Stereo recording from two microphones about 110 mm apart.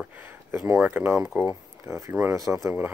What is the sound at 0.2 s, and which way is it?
Speech, 20° right (ahead or behind).